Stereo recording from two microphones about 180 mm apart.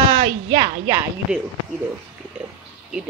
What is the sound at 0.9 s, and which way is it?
Speech, 10° right (ahead or behind).